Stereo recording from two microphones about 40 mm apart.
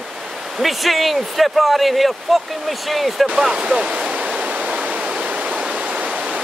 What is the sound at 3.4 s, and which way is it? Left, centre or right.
Speech, centre.